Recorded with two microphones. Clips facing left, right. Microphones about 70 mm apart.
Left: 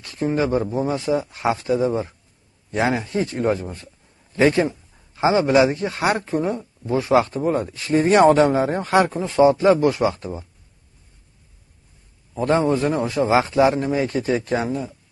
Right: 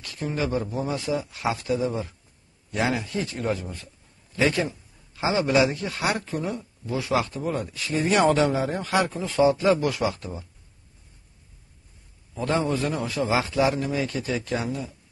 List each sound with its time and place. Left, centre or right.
0.0 s a man's voice: left
12.4 s a man's voice: left